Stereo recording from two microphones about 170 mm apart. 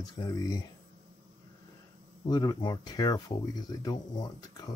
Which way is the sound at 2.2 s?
25° left (ahead or behind).